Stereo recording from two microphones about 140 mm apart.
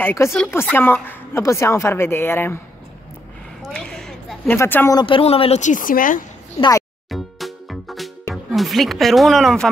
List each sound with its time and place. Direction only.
0.0 s a woman's voice: 20° left (ahead or behind)
3.6 s a sound: 5° left (ahead or behind)
4.5 s a woman's voice: 15° left (ahead or behind)
4.9 s a man's voice: 40° left (ahead or behind)
5.6 s speech: 70° left (ahead or behind)
7.1 s music: centre (ahead or behind)
8.5 s speech: centre (ahead or behind)